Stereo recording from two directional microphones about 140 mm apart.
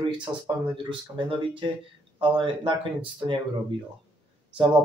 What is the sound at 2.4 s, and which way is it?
Speech, 40° right (ahead or behind).